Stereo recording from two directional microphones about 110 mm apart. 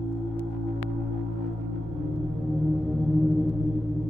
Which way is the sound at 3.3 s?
Centre (ahead or behind).